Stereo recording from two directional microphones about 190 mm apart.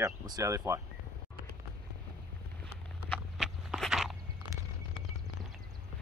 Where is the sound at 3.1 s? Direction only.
Centre (ahead or behind).